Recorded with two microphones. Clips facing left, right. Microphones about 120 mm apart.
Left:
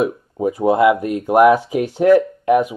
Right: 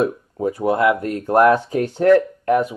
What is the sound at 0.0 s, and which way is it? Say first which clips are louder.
Speech: left 1 dB; 20° left (ahead or behind).